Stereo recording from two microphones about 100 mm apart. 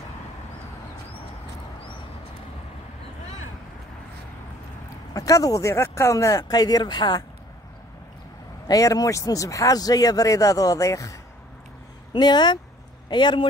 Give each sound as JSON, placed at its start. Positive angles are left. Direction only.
{"t": 5.1, "sound": "speech", "side_deg": 35}
{"t": 8.6, "sound": "speech", "side_deg": 35}
{"t": 12.1, "sound": "speech", "side_deg": 50}